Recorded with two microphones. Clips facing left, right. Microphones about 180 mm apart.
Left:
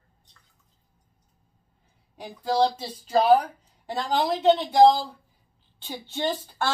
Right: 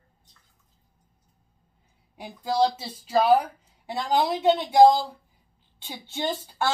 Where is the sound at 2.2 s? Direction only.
10° right (ahead or behind).